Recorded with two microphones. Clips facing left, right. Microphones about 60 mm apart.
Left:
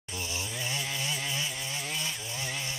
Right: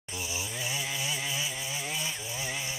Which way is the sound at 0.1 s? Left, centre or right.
Centre.